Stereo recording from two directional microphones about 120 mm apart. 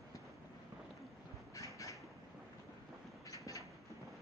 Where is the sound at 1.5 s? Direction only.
25° left (ahead or behind).